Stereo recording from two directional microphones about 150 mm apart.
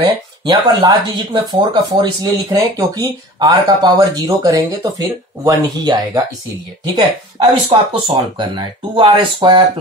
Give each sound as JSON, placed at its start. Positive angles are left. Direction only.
{"t": 0.0, "sound": "speech", "side_deg": -30}